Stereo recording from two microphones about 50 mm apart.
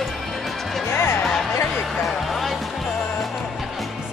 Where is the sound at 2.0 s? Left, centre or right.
Centre.